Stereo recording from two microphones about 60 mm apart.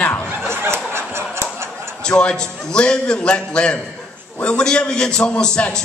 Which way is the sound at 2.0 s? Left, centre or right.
Centre.